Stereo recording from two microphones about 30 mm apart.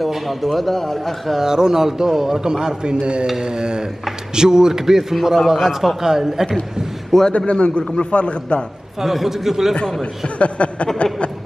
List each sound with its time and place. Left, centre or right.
0.3 s a man's voice: centre
1.4 s speech: centre
2.4 s a man's voice: right
4.9 s speech: centre
7.3 s a man's voice: left
9.0 s speech: centre
10.2 s speech: left